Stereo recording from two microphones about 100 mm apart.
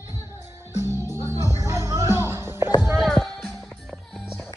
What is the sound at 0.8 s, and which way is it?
Music, 25° right (ahead or behind).